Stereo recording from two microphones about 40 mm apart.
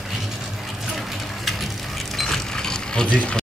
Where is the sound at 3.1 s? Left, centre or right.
Left.